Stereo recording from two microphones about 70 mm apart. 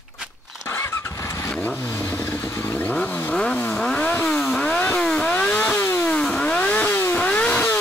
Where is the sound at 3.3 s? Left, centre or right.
Centre.